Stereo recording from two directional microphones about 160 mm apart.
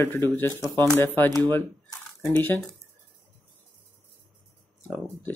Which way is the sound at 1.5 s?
15° left (ahead or behind).